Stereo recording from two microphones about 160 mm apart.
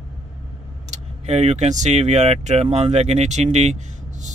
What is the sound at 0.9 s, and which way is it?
Speech, 45° right (ahead or behind).